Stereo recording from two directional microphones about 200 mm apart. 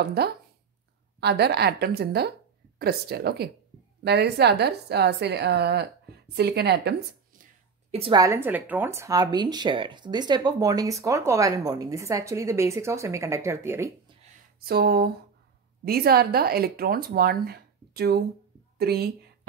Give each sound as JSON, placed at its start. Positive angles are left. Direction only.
{"t": 0.0, "sound": "a woman's voice", "side_deg": -55}
{"t": 7.9, "sound": "a woman's voice", "side_deg": -30}
{"t": 8.2, "sound": "speech", "side_deg": -15}
{"t": 14.6, "sound": "speech", "side_deg": -50}